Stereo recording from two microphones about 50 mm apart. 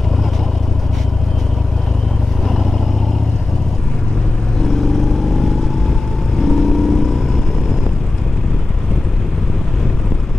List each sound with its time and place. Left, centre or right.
4.6 s vehicle: centre